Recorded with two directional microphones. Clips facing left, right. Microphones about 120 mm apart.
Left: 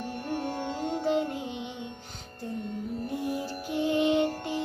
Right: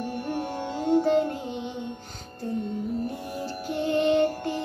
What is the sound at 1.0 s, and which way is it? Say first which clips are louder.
Music: right 4 dB; 15° left (ahead or behind).